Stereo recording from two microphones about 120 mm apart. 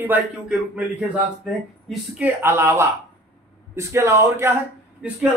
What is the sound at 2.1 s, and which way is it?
Speech, 15° right (ahead or behind).